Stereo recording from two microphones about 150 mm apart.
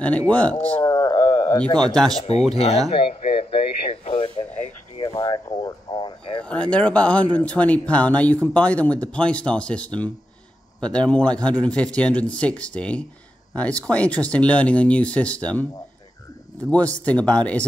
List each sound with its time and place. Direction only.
0.0 s speech: 10° left (ahead or behind)
0.8 s a sound: 25° left (ahead or behind)
2.2 s speech: 45° left (ahead or behind)
2.9 s a sound: 40° left (ahead or behind)
4.9 s speech: 30° left (ahead or behind)
6.4 s speech: 10° left (ahead or behind)